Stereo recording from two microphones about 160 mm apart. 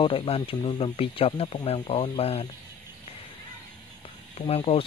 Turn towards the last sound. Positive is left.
turn(degrees=35)  # may be behind; listen again after turning